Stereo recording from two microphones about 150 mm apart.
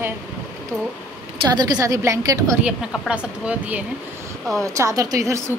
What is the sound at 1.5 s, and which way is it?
A woman's voice, 25° right (ahead or behind).